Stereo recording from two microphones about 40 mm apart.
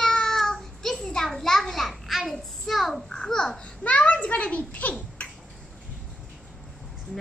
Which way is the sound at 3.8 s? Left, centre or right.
Left.